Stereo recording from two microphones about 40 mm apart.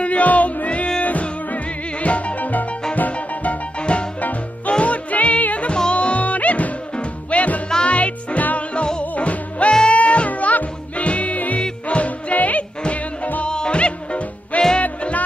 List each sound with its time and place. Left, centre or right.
0.0 s music: left
3.1 s music: left
13.5 s music: left